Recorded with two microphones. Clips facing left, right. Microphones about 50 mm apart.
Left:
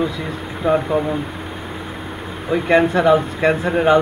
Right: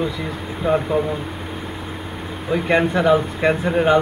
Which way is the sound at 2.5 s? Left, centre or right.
Centre.